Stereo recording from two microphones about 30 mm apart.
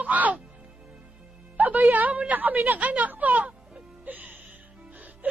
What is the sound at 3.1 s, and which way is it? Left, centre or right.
Music, right.